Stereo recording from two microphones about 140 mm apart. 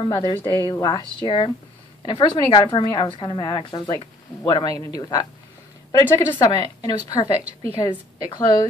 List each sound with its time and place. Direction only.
0.0 s a woman's voice: 35° left (ahead or behind)